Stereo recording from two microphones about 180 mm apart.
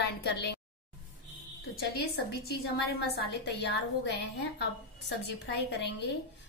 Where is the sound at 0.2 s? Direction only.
65° left (ahead or behind).